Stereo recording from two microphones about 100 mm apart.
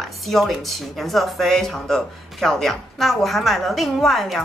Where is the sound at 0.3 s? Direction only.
Centre (ahead or behind).